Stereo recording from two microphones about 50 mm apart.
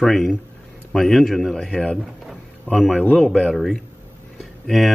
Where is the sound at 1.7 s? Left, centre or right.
Centre.